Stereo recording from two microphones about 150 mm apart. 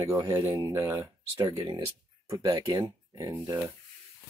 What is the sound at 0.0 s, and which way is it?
Speech, 20° right (ahead or behind).